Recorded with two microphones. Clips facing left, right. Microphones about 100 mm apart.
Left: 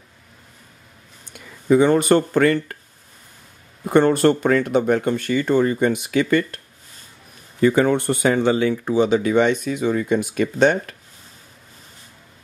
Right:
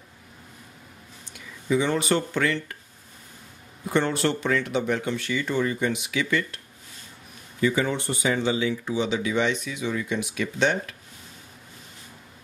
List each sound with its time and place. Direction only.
1.2 s speech: 50° left (ahead or behind)
3.8 s speech: 50° left (ahead or behind)
7.6 s speech: 50° left (ahead or behind)